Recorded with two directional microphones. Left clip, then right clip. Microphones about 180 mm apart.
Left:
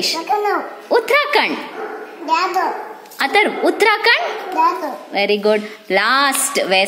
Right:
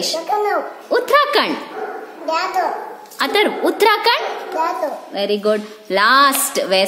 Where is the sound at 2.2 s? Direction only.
20° right (ahead or behind).